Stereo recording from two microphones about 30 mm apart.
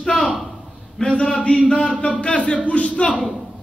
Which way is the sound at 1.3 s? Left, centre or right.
Left.